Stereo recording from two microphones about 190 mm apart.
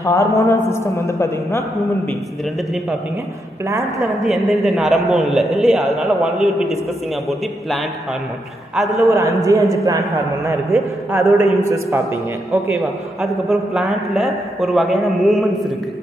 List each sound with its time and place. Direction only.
0.0 s a man's voice: 15° left (ahead or behind)
4.0 s a man's voice: centre (ahead or behind)
8.7 s a man's voice: centre (ahead or behind)
9.1 s a man's voice: 15° right (ahead or behind)
12.7 s a man's voice: centre (ahead or behind)